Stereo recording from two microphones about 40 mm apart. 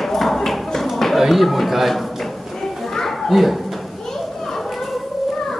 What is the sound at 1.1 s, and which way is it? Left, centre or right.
Speech, centre.